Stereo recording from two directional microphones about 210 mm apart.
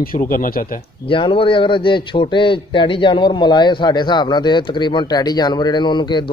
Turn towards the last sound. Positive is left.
turn(degrees=20)  # may be behind; listen again after turning